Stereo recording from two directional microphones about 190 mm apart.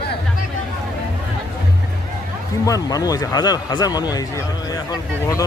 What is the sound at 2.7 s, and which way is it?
Speech, 20° left (ahead or behind).